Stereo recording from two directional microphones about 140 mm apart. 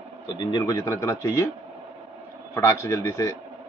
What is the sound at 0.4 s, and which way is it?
A man's voice, 30° left (ahead or behind).